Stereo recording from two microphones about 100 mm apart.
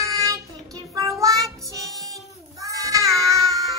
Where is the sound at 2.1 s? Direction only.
35° right (ahead or behind).